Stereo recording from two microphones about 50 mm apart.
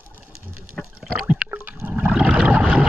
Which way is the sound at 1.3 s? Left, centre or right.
Right.